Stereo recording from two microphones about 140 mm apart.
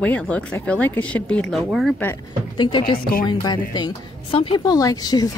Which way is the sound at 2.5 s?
35° left (ahead or behind).